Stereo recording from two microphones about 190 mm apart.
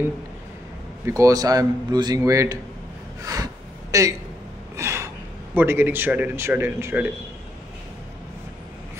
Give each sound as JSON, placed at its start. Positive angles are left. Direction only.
{"t": 1.0, "sound": "a man's voice", "side_deg": -15}
{"t": 3.9, "sound": "a man's voice", "side_deg": -15}
{"t": 4.7, "sound": "gasp", "side_deg": -15}
{"t": 5.5, "sound": "a man's voice", "side_deg": -10}